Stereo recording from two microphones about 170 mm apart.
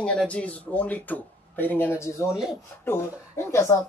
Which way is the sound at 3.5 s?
15° left (ahead or behind).